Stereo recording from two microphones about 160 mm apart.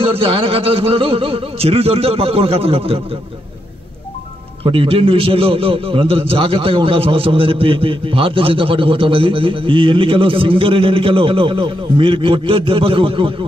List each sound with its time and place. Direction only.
0.0 s a man's voice: 35° right (ahead or behind)
4.6 s a man's voice: 35° right (ahead or behind)